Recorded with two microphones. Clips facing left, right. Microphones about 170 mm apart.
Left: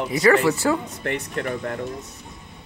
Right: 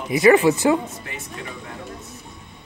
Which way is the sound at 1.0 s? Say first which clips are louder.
Left 8 dB; 65° left (ahead or behind).